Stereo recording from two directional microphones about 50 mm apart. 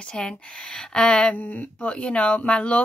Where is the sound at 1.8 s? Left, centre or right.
Left.